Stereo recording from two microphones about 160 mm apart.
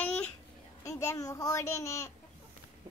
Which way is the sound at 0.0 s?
10° left (ahead or behind).